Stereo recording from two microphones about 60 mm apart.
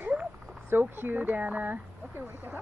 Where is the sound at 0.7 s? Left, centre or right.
Right.